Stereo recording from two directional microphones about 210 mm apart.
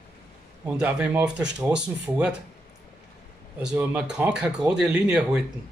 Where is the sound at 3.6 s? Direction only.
5° right (ahead or behind).